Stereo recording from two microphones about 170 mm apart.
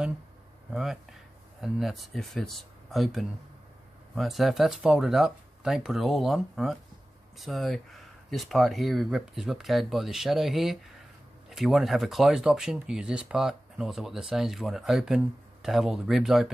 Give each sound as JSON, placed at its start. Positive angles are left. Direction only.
{"t": 1.6, "sound": "speech", "side_deg": 0}